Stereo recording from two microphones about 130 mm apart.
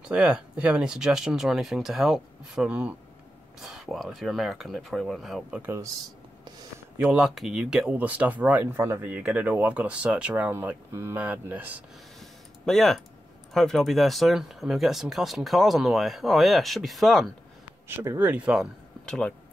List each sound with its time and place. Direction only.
0.0 s speech: 10° right (ahead or behind)
5.6 s speech: 20° right (ahead or behind)
7.0 s speech: 5° right (ahead or behind)
12.2 s a sound: centre (ahead or behind)
13.5 s speech: 5° left (ahead or behind)
17.8 s speech: 20° right (ahead or behind)
19.0 s speech: 5° left (ahead or behind)